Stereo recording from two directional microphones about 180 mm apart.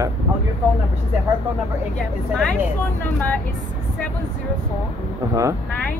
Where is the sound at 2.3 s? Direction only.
5° left (ahead or behind).